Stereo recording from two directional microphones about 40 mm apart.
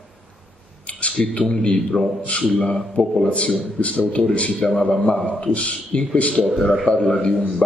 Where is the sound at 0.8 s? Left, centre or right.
Left.